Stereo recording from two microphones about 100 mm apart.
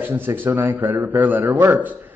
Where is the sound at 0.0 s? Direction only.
20° right (ahead or behind).